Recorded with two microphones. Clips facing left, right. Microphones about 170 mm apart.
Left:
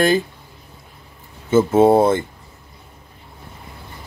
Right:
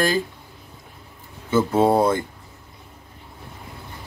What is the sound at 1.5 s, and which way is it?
Speech, 20° left (ahead or behind).